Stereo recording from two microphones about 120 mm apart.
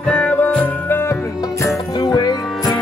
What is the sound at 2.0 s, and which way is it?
Music, 35° left (ahead or behind).